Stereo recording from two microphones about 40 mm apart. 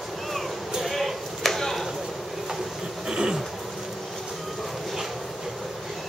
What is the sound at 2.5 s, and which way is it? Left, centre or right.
Train, centre.